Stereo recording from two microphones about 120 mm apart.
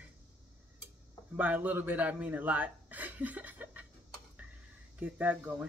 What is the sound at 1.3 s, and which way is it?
A man's voice, 15° right (ahead or behind).